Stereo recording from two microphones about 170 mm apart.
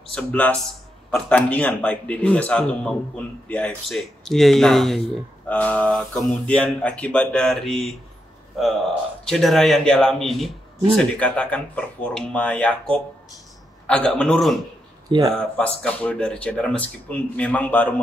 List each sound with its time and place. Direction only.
0.1 s speech: 5° left (ahead or behind)
13.8 s speech: 5° left (ahead or behind)
15.0 s speech: 25° right (ahead or behind)
15.3 s speech: 5° left (ahead or behind)